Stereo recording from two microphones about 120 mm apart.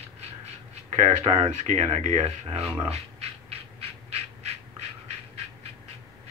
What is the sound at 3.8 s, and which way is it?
Crow, 55° right (ahead or behind).